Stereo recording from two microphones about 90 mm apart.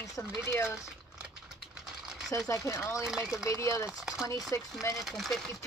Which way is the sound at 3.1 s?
5° right (ahead or behind).